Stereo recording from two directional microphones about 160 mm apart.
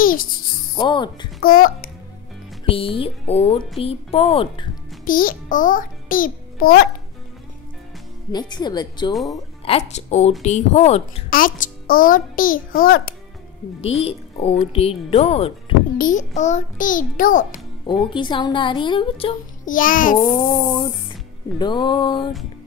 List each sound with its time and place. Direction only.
0.0 s a child's voice: 60° left (ahead or behind)
0.7 s speech: 30° left (ahead or behind)
1.4 s a child's voice: 65° left (ahead or behind)
2.6 s a woman's voice: 35° left (ahead or behind)
5.0 s a child's voice: 60° left (ahead or behind)
8.3 s speech: 25° left (ahead or behind)
9.1 s speech: centre (ahead or behind)
9.7 s a woman's voice: 45° left (ahead or behind)
11.2 s a child's voice: 60° left (ahead or behind)
13.7 s a woman's voice: 40° left (ahead or behind)
16.0 s a child's voice: 50° left (ahead or behind)
17.8 s a woman's voice: 30° left (ahead or behind)
19.6 s a child's voice: 55° left (ahead or behind)
20.4 s a woman's voice: 30° left (ahead or behind)